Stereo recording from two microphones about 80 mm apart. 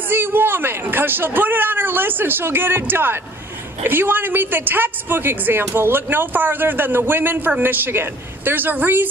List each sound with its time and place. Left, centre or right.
0.1 s speech: right